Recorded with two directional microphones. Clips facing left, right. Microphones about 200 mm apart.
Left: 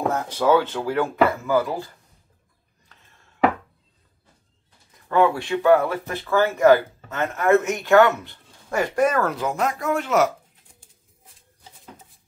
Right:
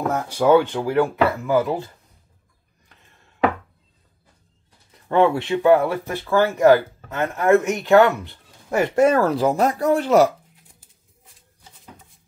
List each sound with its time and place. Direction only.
0.1 s speech: 10° right (ahead or behind)
5.0 s speech: 25° right (ahead or behind)